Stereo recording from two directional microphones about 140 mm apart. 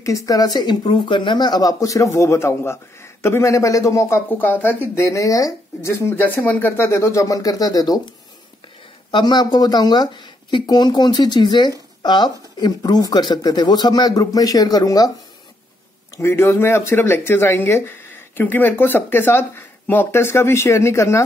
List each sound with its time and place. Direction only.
0.0 s speech: 25° left (ahead or behind)
9.1 s speech: 30° left (ahead or behind)
16.2 s speech: 20° left (ahead or behind)